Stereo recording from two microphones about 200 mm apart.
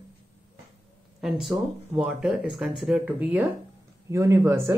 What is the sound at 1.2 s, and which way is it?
Speech, centre (ahead or behind).